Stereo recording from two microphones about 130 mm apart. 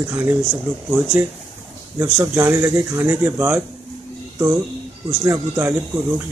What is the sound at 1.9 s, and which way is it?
Speech, 20° right (ahead or behind).